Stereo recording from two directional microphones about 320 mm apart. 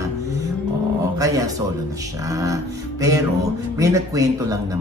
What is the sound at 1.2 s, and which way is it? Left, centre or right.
Speech, centre.